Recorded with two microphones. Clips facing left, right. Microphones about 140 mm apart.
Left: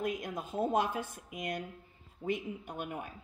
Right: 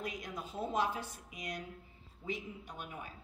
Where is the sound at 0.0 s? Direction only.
50° left (ahead or behind).